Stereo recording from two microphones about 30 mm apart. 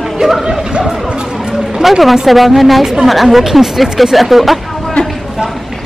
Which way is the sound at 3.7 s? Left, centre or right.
Centre.